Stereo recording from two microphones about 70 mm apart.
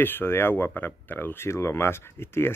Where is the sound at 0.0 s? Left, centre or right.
Left.